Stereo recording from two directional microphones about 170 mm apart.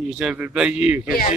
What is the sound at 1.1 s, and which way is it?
Speech, 55° left (ahead or behind).